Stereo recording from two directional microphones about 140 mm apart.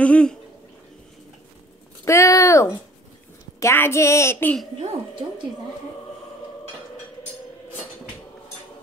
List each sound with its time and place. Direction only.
0.0 s speech: 10° left (ahead or behind)
2.0 s a child's voice: 20° left (ahead or behind)